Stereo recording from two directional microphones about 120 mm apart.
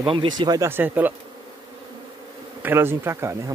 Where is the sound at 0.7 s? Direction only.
15° right (ahead or behind).